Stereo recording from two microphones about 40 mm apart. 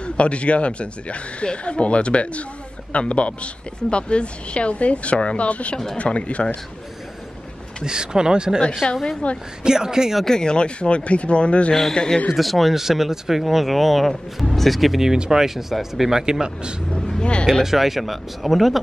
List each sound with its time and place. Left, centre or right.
0.0 s a woman's voice: left
7.8 s speech: centre
8.8 s a man's voice: centre
9.2 s a woman's voice: left
9.6 s speech: centre
10.2 s speech: centre
11.9 s a man's voice: centre
12.3 s speech: centre
15.0 s speech: centre
17.2 s speech: left
17.6 s speech: centre